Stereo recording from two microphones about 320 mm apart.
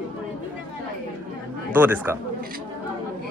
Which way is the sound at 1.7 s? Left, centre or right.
Centre.